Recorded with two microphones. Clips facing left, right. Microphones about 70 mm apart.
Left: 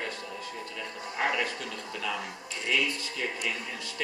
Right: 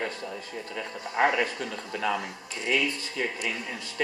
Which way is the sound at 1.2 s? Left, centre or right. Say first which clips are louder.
Right 6 dB; right.